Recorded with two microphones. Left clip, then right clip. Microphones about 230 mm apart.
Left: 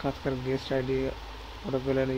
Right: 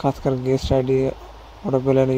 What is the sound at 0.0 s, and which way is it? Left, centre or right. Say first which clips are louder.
Speech: right 10 dB; right.